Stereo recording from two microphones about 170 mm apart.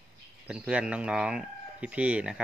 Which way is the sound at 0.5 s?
5° right (ahead or behind).